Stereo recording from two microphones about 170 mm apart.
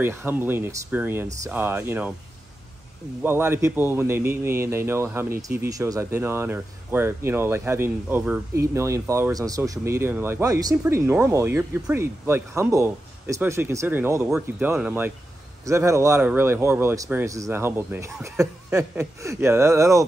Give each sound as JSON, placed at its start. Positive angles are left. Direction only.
{"t": 0.0, "sound": "speech", "side_deg": -15}
{"t": 3.2, "sound": "speech", "side_deg": -15}